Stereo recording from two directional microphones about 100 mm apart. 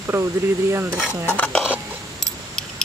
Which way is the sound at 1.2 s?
15° left (ahead or behind).